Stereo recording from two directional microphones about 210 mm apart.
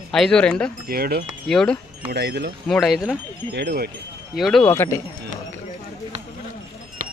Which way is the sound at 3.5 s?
50° right (ahead or behind).